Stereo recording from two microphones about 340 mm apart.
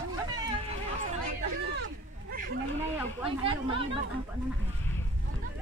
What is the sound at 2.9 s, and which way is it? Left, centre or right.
Speech, centre.